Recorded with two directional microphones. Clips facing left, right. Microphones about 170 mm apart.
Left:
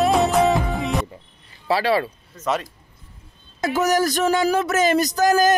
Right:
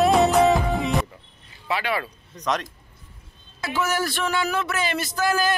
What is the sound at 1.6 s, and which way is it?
Speech, 35° left (ahead or behind).